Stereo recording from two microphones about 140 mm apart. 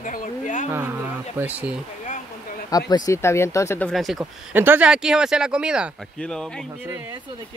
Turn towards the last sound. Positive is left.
turn(degrees=-15)  # may be behind; listen again after turning